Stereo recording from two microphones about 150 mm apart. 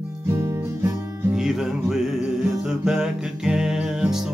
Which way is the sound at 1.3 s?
Centre (ahead or behind).